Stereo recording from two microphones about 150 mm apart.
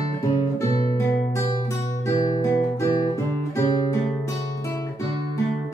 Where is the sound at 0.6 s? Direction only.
20° left (ahead or behind).